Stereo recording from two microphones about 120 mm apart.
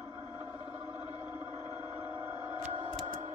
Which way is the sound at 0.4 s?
15° right (ahead or behind).